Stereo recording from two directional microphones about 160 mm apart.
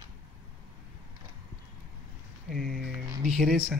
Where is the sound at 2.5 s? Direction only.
Centre (ahead or behind).